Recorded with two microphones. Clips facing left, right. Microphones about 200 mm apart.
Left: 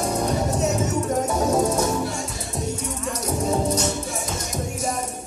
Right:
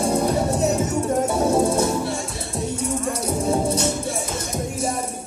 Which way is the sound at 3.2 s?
30° right (ahead or behind).